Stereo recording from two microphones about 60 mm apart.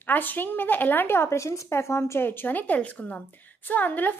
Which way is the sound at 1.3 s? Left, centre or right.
Left.